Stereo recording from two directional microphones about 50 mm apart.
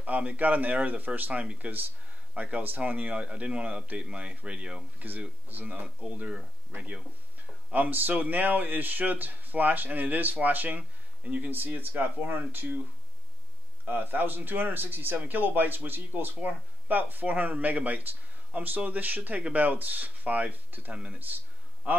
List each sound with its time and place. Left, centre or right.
0.0 s speech: right
4.9 s speech: right
7.7 s speech: right
11.5 s speech: right
13.8 s a man's voice: right